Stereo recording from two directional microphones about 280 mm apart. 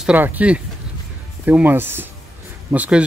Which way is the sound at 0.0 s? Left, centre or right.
Centre.